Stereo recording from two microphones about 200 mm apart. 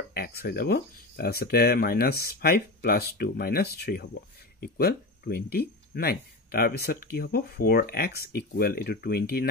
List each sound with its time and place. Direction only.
0.1 s speech: 50° left (ahead or behind)